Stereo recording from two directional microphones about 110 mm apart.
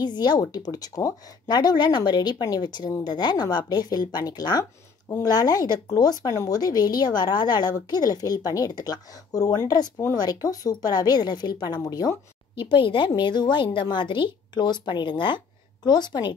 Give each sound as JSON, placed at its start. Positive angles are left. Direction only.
{"t": 0.0, "sound": "a woman's voice", "side_deg": 40}